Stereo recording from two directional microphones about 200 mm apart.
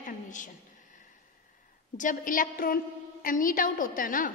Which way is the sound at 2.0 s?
40° left (ahead or behind).